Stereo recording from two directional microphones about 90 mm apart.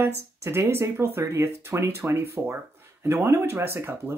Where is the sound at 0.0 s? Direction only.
30° right (ahead or behind).